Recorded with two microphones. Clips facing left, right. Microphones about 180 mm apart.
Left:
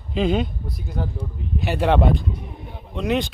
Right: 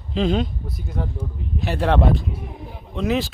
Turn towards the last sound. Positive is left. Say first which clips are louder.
# even
turn(degrees=0)  # may be behind; listen again after turning